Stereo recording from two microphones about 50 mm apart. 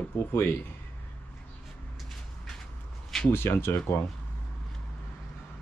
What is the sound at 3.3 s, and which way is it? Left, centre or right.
Speech, left.